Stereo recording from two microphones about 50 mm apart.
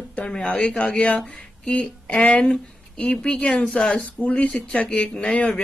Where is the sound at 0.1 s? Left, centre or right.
Centre.